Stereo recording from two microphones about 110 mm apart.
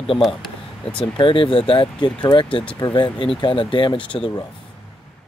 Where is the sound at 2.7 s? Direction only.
40° left (ahead or behind).